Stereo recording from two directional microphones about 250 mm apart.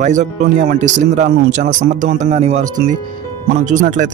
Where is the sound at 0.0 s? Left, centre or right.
Right.